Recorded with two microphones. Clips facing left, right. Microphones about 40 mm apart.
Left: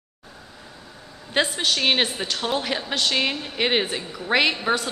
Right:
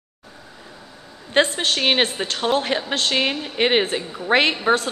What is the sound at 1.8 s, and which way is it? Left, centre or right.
A woman's voice, centre.